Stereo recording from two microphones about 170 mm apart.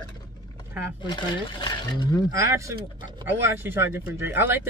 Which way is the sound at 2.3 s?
15° right (ahead or behind).